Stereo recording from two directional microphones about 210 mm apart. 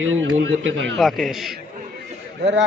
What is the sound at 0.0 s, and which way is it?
Speech, 70° right (ahead or behind).